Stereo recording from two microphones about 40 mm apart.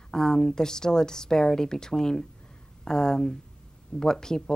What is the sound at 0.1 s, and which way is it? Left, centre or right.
A woman's voice, centre.